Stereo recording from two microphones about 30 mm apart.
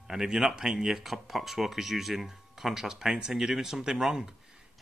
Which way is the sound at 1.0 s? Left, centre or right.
Centre.